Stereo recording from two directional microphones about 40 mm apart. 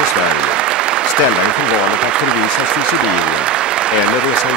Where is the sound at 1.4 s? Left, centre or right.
Right.